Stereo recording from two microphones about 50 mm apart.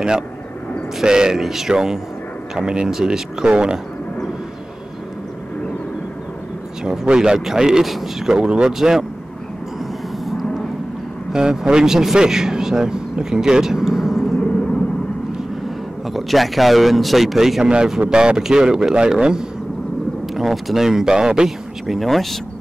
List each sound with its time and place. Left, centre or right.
1.0 s speech: centre
6.8 s speech: centre
11.3 s speech: centre
16.1 s speech: centre
20.3 s speech: centre
21.8 s speech: centre